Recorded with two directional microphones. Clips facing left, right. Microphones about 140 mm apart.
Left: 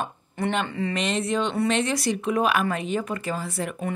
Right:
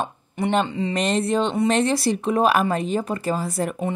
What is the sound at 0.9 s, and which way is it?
A woman's voice, 40° right (ahead or behind).